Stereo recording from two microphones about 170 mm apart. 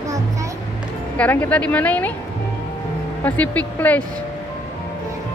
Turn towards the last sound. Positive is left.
turn(degrees=10)  # may be behind; listen again after turning